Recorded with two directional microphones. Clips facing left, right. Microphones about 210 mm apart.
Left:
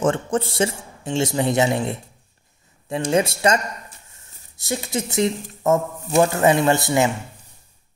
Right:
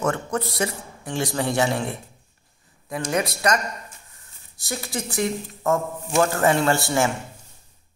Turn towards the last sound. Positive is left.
turn(degrees=20)  # may be behind; listen again after turning